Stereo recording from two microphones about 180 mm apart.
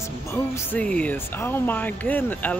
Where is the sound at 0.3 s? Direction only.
10° left (ahead or behind).